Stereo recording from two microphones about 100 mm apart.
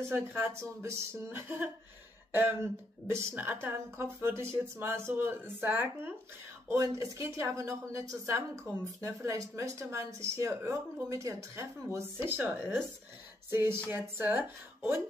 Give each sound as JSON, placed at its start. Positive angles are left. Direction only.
{"t": 0.1, "sound": "a woman's voice", "side_deg": -25}
{"t": 3.1, "sound": "a woman's voice", "side_deg": -25}